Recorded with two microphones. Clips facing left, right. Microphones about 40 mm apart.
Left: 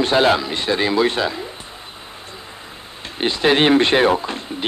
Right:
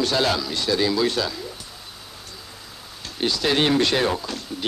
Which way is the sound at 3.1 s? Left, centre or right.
Left.